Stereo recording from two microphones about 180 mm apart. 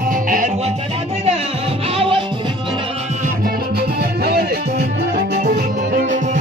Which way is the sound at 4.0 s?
60° right (ahead or behind).